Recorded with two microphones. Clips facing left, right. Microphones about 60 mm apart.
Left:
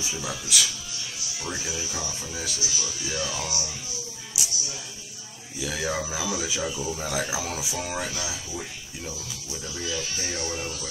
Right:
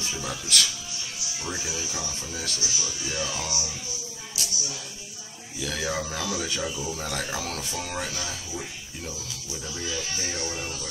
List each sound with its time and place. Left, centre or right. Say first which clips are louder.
0.0 s speech: even; centre
4.4 s a sound: left 1 dB; centre
5.6 s speech: left 1 dB; centre